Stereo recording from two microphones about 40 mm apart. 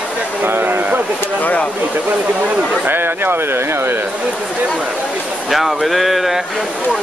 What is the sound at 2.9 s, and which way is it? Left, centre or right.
Speech, right.